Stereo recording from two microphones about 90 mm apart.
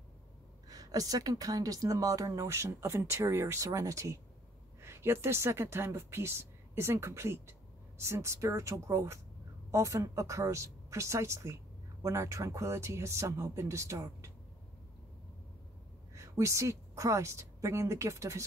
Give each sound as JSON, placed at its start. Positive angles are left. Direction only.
{"t": 0.7, "sound": "a woman's voice", "side_deg": -45}
{"t": 16.2, "sound": "a woman's voice", "side_deg": -35}